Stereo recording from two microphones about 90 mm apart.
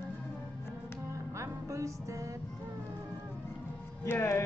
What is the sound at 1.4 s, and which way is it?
Music, 35° right (ahead or behind).